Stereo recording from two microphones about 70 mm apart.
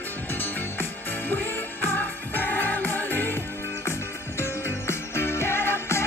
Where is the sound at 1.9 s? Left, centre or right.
Left.